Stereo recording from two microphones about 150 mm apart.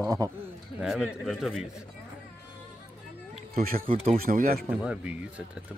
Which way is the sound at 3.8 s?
40° right (ahead or behind).